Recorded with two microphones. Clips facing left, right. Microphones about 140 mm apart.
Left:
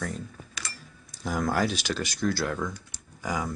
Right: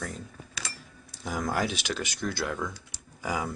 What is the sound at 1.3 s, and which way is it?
Speech, centre (ahead or behind).